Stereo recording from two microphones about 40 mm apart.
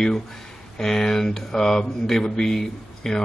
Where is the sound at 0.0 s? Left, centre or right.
Centre.